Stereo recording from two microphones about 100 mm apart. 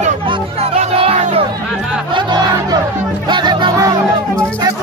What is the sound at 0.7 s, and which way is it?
Music, 80° right.